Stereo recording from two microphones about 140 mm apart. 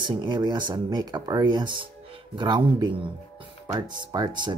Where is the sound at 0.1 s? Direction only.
35° right (ahead or behind).